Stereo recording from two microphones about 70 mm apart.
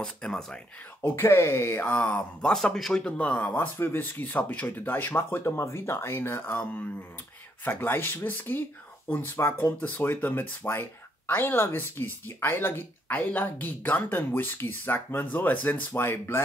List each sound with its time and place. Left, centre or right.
0.0 s speech: centre
1.0 s speech: left
2.0 s speech: left
2.5 s speech: centre
3.2 s speech: left